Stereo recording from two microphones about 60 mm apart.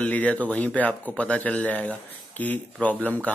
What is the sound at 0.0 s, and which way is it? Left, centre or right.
Speech, left.